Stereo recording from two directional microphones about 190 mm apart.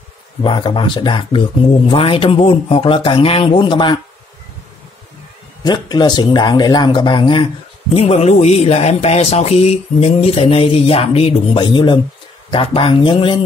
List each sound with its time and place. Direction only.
0.4 s speech: 25° left (ahead or behind)
5.6 s speech: 20° left (ahead or behind)